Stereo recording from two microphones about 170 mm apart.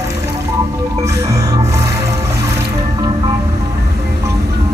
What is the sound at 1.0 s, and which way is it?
Music, 20° right (ahead or behind).